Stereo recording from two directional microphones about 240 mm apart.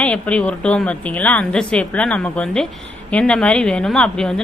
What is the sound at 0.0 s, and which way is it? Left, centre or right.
A woman's voice, centre.